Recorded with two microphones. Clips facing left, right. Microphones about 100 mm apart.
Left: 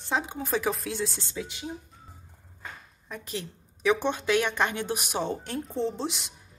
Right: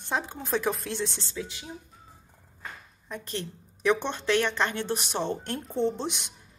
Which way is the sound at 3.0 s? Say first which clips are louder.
Right 1 dB; 5° left (ahead or behind).